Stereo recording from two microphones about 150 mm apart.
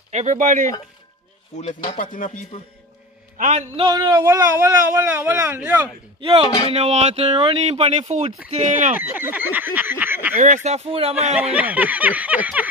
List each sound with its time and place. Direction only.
0.1 s speech: 55° right (ahead or behind)
2.0 s speech: 60° left (ahead or behind)
3.3 s a man's voice: 55° right (ahead or behind)
3.7 s speech: 35° right (ahead or behind)
4.2 s speech: 20° right (ahead or behind)
6.2 s speech: 35° right (ahead or behind); by 8.9 s 55° right (ahead or behind)
8.9 s a sound: 10° right (ahead or behind)
10.4 s speech: 50° right (ahead or behind)
11.3 s speech: 10° right (ahead or behind)